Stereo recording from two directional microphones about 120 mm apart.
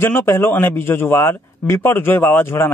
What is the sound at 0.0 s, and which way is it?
Speech, 20° left (ahead or behind).